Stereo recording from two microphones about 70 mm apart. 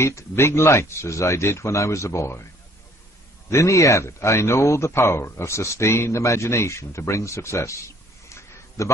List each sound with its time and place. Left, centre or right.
0.0 s speech: left
3.4 s speech: left
8.3 s a sound: left